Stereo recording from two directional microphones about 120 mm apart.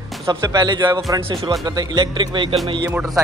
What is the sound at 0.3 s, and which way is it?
Speech, 35° right (ahead or behind).